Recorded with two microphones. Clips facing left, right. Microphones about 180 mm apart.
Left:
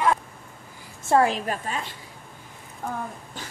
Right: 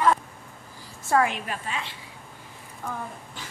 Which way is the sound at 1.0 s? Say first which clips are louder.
Left 3 dB; 30° left (ahead or behind).